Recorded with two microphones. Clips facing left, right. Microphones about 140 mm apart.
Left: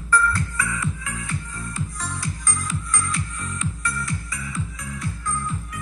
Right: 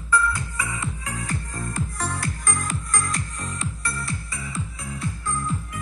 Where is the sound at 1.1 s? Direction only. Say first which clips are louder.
Right 1 dB; 40° right (ahead or behind).